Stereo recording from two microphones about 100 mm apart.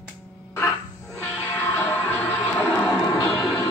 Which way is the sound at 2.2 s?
15° left (ahead or behind).